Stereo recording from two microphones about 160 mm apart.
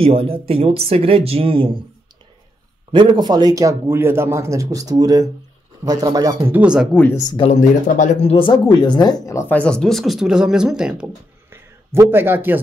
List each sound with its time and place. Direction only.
0.0 s speech: 35° right (ahead or behind)
2.9 s a man's voice: 30° right (ahead or behind)
6.4 s speech: 10° right (ahead or behind)
6.9 s speech: 10° left (ahead or behind)
7.2 s speech: 25° left (ahead or behind)
7.4 s a man's voice: 50° left (ahead or behind)
8.4 s speech: 30° left (ahead or behind); by 11.1 s 5° right (ahead or behind)
11.5 s a sound: 15° right (ahead or behind)